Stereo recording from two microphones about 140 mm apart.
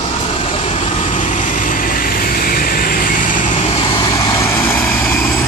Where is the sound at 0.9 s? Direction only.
60° left (ahead or behind).